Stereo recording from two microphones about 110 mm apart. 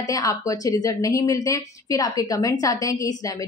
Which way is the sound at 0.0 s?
35° left (ahead or behind).